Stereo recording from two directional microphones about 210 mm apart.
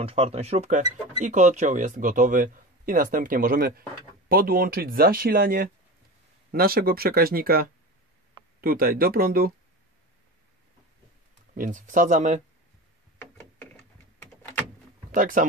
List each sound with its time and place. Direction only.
0.0 s speech: 30° right (ahead or behind); by 9.5 s 45° right (ahead or behind)
11.5 s speech: 40° right (ahead or behind)
13.2 s a sound: 10° left (ahead or behind)
15.0 s speech: 40° right (ahead or behind)